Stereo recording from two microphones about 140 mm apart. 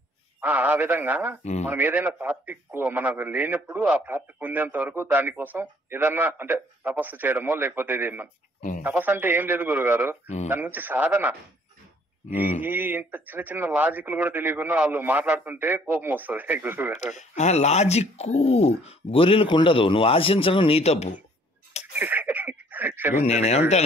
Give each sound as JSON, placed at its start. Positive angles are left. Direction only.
{"t": 0.4, "sound": "speech", "side_deg": -10}
{"t": 1.4, "sound": "speech", "side_deg": 55}
{"t": 1.7, "sound": "speech", "side_deg": -15}
{"t": 10.2, "sound": "speech", "side_deg": 50}
{"t": 10.5, "sound": "speech", "side_deg": -15}
{"t": 12.6, "sound": "speech", "side_deg": -15}
{"t": 16.9, "sound": "speech", "side_deg": 55}
{"t": 21.9, "sound": "a sound", "side_deg": -15}
{"t": 23.1, "sound": "speech", "side_deg": 50}